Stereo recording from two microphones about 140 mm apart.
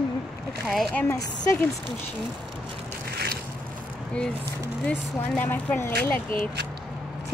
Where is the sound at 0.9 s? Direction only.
15° left (ahead or behind).